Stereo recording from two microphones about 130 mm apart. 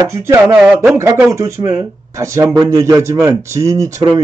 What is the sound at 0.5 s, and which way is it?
Speech, 10° right (ahead or behind).